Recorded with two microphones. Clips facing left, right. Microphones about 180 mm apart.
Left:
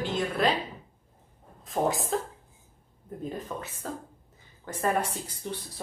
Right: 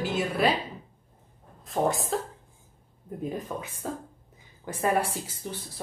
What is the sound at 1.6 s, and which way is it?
Speech, centre (ahead or behind).